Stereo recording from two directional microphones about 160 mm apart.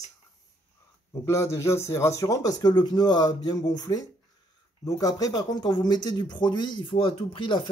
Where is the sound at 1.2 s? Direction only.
15° left (ahead or behind).